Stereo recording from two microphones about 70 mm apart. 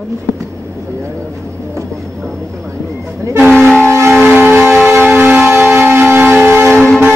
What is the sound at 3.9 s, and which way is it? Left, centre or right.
Civil defense siren, right.